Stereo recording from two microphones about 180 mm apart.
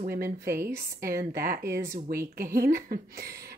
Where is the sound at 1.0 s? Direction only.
55° right (ahead or behind).